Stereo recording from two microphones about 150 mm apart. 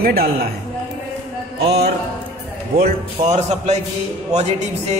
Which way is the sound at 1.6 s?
90° right.